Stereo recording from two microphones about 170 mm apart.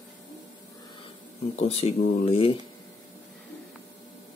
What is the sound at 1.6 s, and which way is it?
Speech, 35° left (ahead or behind).